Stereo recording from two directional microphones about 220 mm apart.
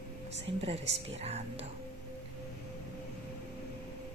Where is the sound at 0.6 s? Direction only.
25° right (ahead or behind).